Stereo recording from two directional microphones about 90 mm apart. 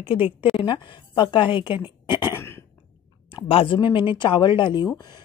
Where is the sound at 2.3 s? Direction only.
30° left (ahead or behind).